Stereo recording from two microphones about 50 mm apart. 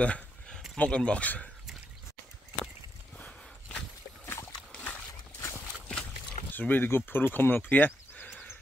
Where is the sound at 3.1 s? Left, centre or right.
Left.